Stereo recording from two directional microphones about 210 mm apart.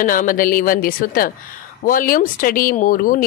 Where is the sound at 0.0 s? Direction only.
40° left (ahead or behind).